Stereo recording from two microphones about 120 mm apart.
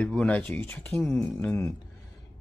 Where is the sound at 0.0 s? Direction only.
10° left (ahead or behind).